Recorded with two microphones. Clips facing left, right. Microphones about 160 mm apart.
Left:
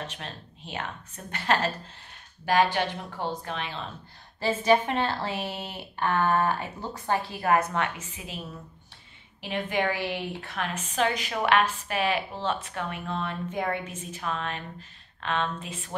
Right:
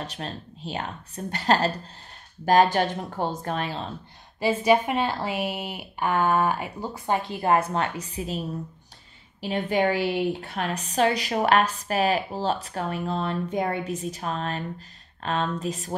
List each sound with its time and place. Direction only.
0.0 s a woman's voice: 35° right (ahead or behind)
4.4 s speech: 10° right (ahead or behind); by 8.4 s 35° right (ahead or behind)
9.4 s a woman's voice: 35° right (ahead or behind)